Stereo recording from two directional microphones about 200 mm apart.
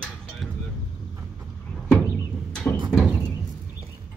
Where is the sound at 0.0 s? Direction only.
Centre (ahead or behind).